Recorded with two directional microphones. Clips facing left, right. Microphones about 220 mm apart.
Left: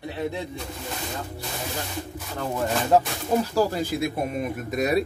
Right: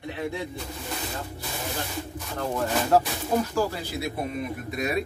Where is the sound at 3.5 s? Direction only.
50° left (ahead or behind).